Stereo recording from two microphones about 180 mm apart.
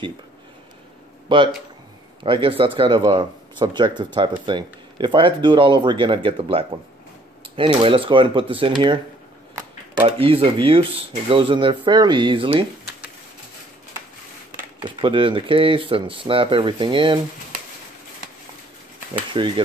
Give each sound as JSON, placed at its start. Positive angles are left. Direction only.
{"t": 1.3, "sound": "speech", "side_deg": -25}
{"t": 10.0, "sound": "speech", "side_deg": -30}
{"t": 14.8, "sound": "speech", "side_deg": -25}
{"t": 19.3, "sound": "speech", "side_deg": -30}